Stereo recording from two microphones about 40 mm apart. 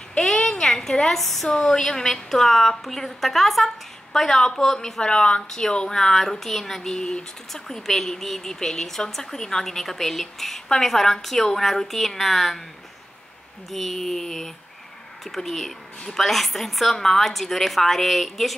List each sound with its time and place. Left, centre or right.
0.2 s a sound: centre
1.2 s a woman's voice: centre; by 7.6 s left
7.6 s a woman's voice: centre
13.7 s a woman's voice: centre